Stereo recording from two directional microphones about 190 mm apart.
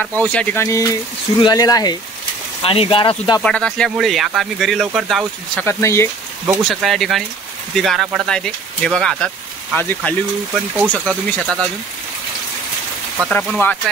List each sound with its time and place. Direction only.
0.2 s speech: 5° left (ahead or behind); by 3.4 s 25° left (ahead or behind)
3.4 s speech: 5° left (ahead or behind)
5.6 s speech: 15° left (ahead or behind)
6.4 s speech: centre (ahead or behind)
13.3 s speech: 5° left (ahead or behind)